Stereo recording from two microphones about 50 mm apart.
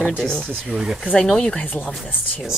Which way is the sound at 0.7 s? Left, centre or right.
Centre.